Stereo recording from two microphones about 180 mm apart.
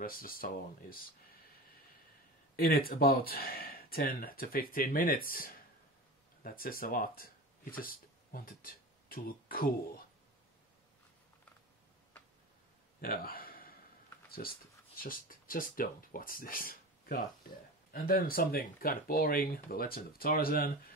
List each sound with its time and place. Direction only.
0.0 s speech: 55° left (ahead or behind)
2.5 s speech: 55° left (ahead or behind)
13.0 s a sound: 55° left (ahead or behind)
15.0 s speech: 50° left (ahead or behind)